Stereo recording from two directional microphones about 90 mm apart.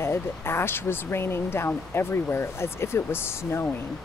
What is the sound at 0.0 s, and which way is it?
Speech, 30° left (ahead or behind).